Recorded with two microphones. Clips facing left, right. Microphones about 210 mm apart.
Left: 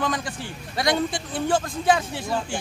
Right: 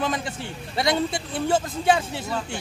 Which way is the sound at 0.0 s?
25° right (ahead or behind).